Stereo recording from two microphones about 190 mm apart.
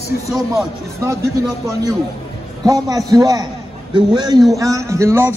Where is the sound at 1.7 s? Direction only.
15° right (ahead or behind).